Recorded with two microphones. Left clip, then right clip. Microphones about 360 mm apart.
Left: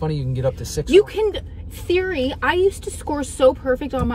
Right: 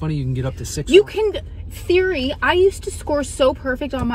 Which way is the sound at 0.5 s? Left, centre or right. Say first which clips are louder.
Right 2 dB; centre.